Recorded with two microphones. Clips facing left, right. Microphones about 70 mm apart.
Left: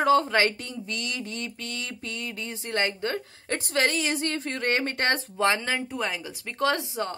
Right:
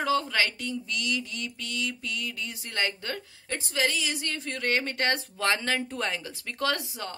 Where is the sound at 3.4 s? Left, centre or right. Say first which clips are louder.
Left 3 dB; left.